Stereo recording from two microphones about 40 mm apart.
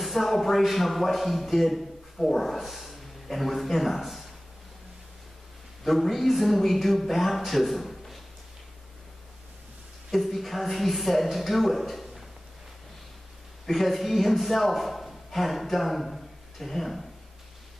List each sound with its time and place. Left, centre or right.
0.0 s speech: centre
5.9 s speech: centre
10.1 s speech: centre
13.7 s a man's voice: centre